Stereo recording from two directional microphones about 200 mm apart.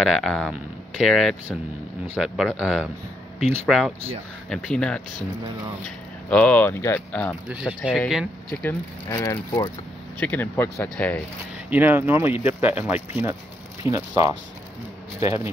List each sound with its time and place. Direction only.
0.0 s speech: centre (ahead or behind)
6.3 s speech: 5° left (ahead or behind)
7.4 s speech: 5° right (ahead or behind)
8.6 s speech: 15° left (ahead or behind)
11.7 s speech: 10° right (ahead or behind)
15.1 s a man's voice: 30° left (ahead or behind)